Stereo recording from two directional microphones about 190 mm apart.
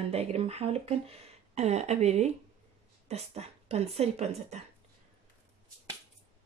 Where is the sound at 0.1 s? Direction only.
35° right (ahead or behind).